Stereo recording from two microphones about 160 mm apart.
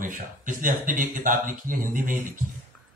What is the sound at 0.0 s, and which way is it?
Speech, 55° right (ahead or behind).